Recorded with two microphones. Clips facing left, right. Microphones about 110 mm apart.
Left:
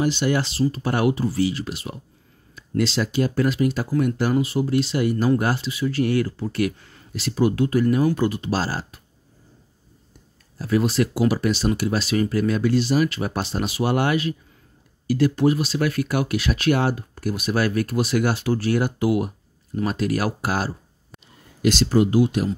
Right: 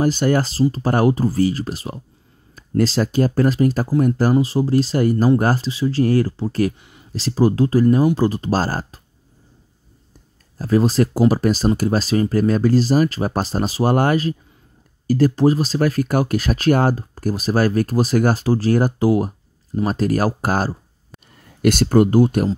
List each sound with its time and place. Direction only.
0.0 s speech: 45° right (ahead or behind)
6.8 s a sound: 15° right (ahead or behind)
7.1 s speech: 35° right (ahead or behind)
10.6 s speech: 35° right (ahead or behind)
21.5 s speech: 50° right (ahead or behind)